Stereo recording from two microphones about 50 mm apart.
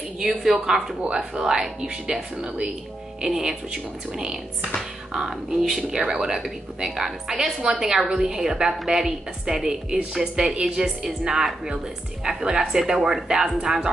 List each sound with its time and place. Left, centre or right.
0.2 s a woman's voice: centre
7.3 s a woman's voice: right
7.8 s a woman's voice: centre